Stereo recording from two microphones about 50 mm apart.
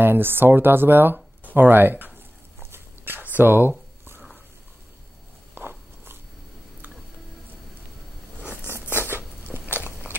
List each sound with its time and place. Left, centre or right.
0.0 s speech: right
2.6 s dog: right
5.5 s biting: right
8.9 s a sound: right